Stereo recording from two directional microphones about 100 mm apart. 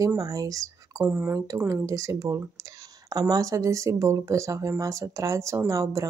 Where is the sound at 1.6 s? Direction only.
35° right (ahead or behind).